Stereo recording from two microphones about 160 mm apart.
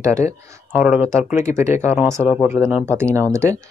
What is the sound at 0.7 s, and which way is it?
Speech, 5° right (ahead or behind).